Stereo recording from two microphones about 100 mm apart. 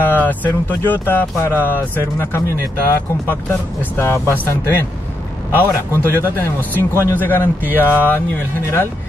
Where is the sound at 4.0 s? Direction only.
20° left (ahead or behind).